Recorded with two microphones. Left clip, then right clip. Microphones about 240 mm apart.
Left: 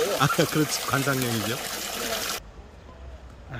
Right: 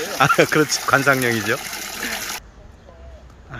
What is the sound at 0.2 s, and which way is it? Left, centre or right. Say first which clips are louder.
Speech: right 8 dB; centre.